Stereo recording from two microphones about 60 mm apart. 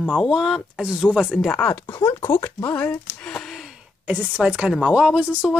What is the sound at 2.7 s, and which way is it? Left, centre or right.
Speech, left.